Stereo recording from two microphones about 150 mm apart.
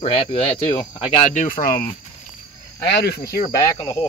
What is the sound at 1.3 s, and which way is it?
Speech, 60° left (ahead or behind).